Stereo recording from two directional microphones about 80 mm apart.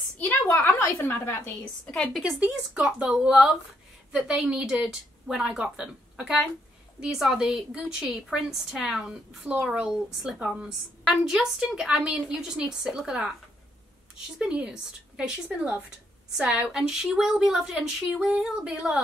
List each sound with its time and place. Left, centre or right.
0.2 s a woman's voice: left
1.6 s a woman's voice: centre
2.4 s a woman's voice: centre
14.4 s speech: centre